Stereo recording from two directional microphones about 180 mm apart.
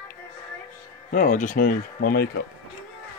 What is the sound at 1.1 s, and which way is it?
Speech, 45° left (ahead or behind).